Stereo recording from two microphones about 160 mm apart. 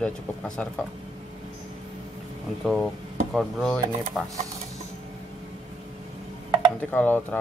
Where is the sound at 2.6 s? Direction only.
Centre (ahead or behind).